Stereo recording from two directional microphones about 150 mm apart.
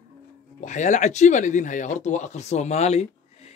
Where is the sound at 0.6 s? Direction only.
55° left (ahead or behind).